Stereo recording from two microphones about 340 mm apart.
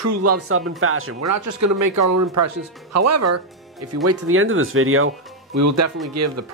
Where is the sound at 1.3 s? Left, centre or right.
Right.